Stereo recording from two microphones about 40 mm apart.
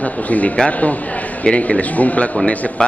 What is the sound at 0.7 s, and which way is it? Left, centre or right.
A woman's voice, left.